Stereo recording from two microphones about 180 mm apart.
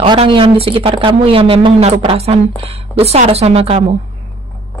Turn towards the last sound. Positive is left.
turn(degrees=-35)  # may be behind; listen again after turning